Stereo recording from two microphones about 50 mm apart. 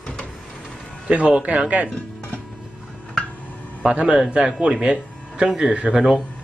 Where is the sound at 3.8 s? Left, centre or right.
Right.